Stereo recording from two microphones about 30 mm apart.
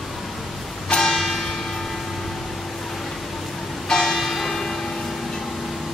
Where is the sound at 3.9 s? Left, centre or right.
Centre.